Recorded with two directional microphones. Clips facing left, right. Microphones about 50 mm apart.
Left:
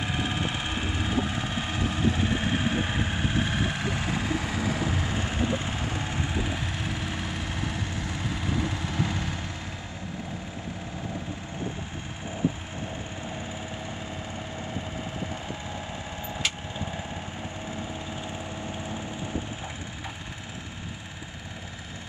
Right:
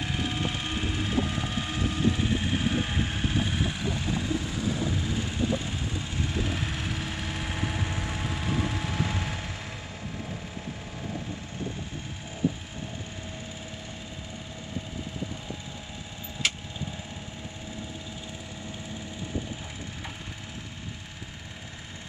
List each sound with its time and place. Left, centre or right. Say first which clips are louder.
0.0 s vehicle: left 1 dB; centre
2.3 s a sound: left 1 dB; left
2.6 s vehicle: left 1 dB; centre
3.4 s vehicle: left 2 dB; left
5.0 s vehicle: left 1 dB; left
6.4 s vehicle: even; centre